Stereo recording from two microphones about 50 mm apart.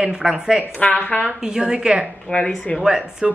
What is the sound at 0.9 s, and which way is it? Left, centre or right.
Speech, left.